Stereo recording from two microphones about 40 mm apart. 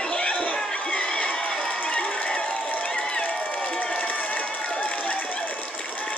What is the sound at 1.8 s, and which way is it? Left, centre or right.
Crowd, left.